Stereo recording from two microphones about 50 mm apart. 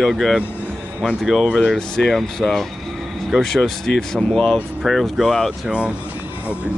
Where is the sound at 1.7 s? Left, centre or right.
Centre.